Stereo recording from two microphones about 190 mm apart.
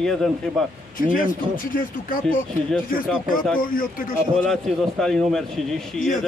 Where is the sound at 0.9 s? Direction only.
45° left (ahead or behind).